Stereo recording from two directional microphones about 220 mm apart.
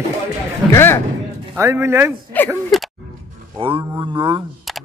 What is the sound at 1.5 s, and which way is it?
Speech, 10° right (ahead or behind).